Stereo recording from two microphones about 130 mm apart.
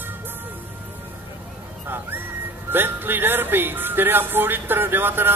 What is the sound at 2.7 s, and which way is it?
Speech, 15° right (ahead or behind).